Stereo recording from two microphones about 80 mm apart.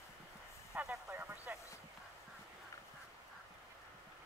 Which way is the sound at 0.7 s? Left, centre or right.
Centre.